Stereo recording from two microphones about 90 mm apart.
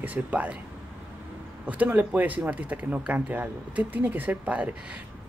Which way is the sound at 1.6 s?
15° right (ahead or behind).